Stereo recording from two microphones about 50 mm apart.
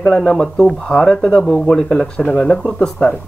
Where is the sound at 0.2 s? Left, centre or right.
Centre.